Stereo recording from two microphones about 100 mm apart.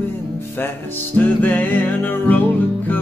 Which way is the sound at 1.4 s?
15° left (ahead or behind).